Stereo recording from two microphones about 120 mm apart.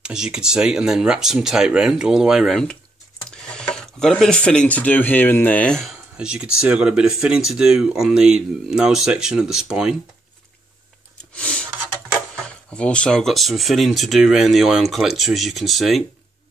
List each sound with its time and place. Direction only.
0.0 s speech: 5° right (ahead or behind)
11.3 s a sound: 10° left (ahead or behind)
12.4 s speech: 10° left (ahead or behind)